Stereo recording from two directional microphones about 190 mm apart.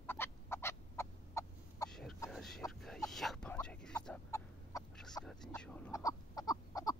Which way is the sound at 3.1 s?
Centre (ahead or behind).